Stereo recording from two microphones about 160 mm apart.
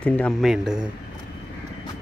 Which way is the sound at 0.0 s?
10° left (ahead or behind).